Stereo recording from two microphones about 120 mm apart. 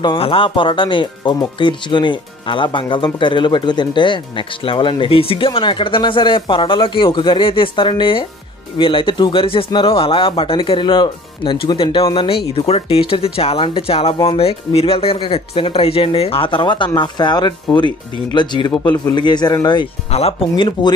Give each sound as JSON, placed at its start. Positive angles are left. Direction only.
{"t": 0.0, "sound": "a man's voice", "side_deg": 50}
{"t": 20.1, "sound": "speech", "side_deg": 60}
{"t": 20.5, "sound": "a man's voice", "side_deg": 40}